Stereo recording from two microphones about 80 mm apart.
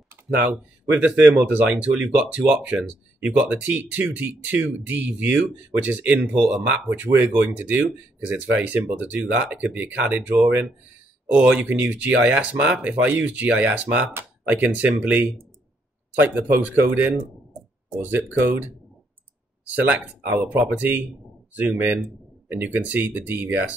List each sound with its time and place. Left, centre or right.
0.8 s speech: centre